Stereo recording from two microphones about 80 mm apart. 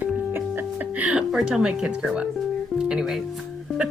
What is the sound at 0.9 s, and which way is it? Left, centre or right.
Speech, centre.